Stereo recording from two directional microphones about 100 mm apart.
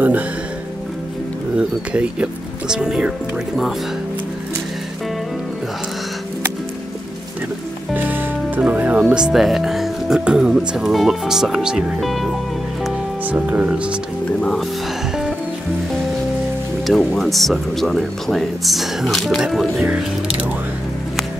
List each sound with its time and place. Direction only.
1.6 s speech: 10° right (ahead or behind)
7.9 s music: 20° right (ahead or behind)
9.0 s speech: 5° right (ahead or behind)
13.3 s speech: 15° right (ahead or behind)
16.8 s speech: centre (ahead or behind)
19.8 s speech: 15° right (ahead or behind)